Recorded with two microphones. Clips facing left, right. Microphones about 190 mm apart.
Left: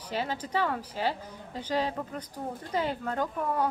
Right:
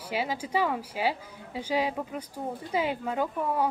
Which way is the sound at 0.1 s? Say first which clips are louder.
Right 2 dB; 10° right (ahead or behind).